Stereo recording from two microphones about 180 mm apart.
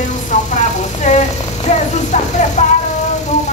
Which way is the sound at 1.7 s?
40° left (ahead or behind).